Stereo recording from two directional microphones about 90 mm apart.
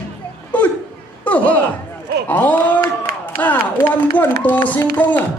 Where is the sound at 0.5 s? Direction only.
15° left (ahead or behind).